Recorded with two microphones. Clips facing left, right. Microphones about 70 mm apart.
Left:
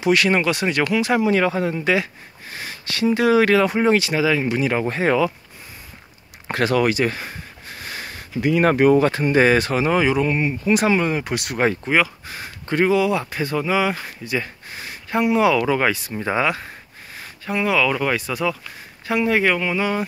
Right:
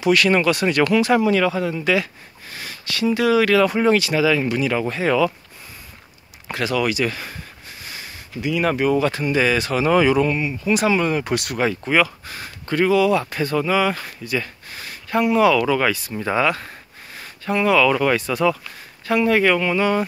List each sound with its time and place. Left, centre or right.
0.0 s speech: left
6.4 s speech: left
7.8 s speech: left
9.8 s speech: centre
10.3 s speech: left
11.0 s speech: centre
11.5 s speech: left
11.8 s speech: centre